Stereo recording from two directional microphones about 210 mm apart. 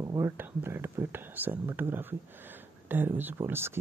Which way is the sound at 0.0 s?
15° right (ahead or behind).